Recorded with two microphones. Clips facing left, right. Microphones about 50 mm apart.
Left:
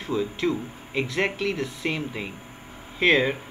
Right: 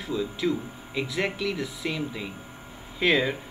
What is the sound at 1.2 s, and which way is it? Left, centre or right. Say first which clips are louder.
Speech: left 2 dB; left.